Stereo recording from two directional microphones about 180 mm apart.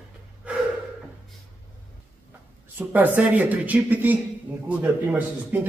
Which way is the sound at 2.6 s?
10° right (ahead or behind).